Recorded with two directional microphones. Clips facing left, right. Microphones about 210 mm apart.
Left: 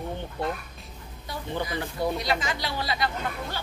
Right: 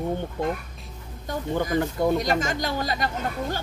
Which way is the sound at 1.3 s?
45° right (ahead or behind).